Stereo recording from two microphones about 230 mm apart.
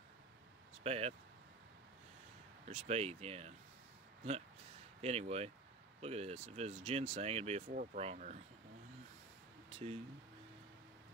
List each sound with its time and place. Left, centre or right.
0.8 s speech: right
2.7 s speech: right
5.0 s speech: right
9.7 s a sound: right